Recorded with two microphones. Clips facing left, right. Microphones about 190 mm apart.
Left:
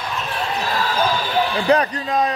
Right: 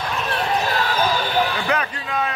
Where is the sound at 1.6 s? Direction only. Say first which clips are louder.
Left 7 dB; 35° left (ahead or behind).